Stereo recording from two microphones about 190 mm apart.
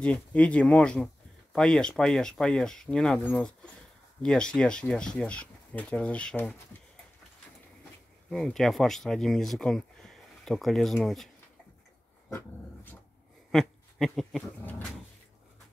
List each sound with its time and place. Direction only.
0.0 s speech: 5° left (ahead or behind)
8.3 s speech: centre (ahead or behind)
12.3 s dog: 10° left (ahead or behind)
13.5 s speech: centre (ahead or behind)